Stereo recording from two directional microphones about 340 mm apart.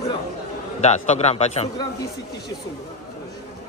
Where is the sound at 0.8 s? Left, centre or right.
Centre.